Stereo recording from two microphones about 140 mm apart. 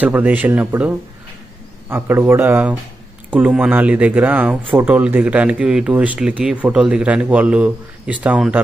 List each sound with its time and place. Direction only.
0.0 s speech: 10° right (ahead or behind)